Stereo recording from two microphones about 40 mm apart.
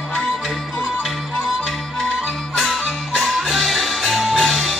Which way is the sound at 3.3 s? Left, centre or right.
Centre.